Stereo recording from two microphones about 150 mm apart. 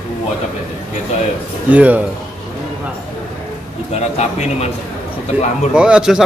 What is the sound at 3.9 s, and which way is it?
Speech, 45° left (ahead or behind).